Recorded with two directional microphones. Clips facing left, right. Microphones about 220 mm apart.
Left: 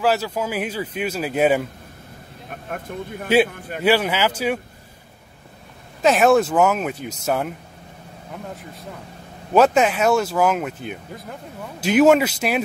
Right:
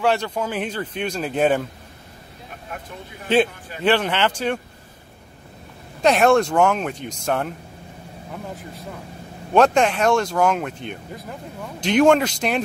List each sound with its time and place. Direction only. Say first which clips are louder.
0.0 s speech: even; 5° left (ahead or behind)
2.5 s a man's voice: left 6 dB; 50° left (ahead or behind)
3.8 s speech: left 1 dB; 10° left (ahead or behind)
6.0 s speech: left 1 dB; 5° left (ahead or behind)
9.5 s speech: left 1 dB; 5° left (ahead or behind)